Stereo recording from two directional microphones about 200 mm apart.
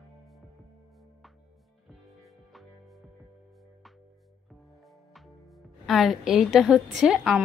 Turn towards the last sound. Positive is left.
turn(degrees=0)  # may be behind; listen again after turning